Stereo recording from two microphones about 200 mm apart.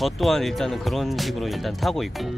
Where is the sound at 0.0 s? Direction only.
Centre (ahead or behind).